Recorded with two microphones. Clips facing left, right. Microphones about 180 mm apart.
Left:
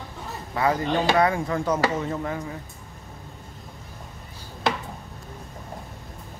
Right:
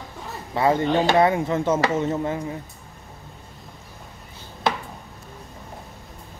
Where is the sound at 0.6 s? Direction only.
25° right (ahead or behind).